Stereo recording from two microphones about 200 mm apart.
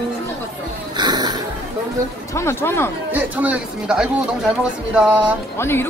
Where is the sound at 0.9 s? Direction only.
20° right (ahead or behind).